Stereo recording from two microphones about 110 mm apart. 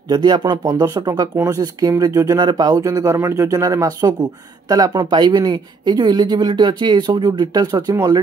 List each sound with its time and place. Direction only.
0.1 s speech: 40° right (ahead or behind)